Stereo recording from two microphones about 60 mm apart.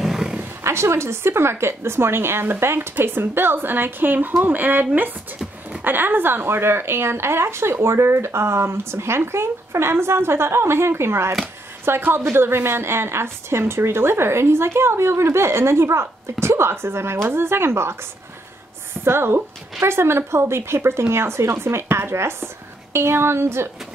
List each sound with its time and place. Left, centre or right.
0.0 s roaring cats: centre
0.7 s a woman's voice: right
19.0 s a woman's voice: right